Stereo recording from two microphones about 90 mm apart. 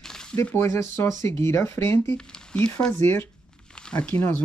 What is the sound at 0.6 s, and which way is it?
Speech, 30° left (ahead or behind).